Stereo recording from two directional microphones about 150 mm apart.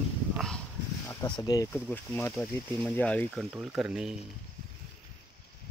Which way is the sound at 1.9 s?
15° left (ahead or behind).